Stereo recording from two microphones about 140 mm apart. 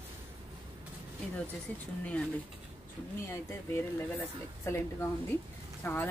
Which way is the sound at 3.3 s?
20° left (ahead or behind).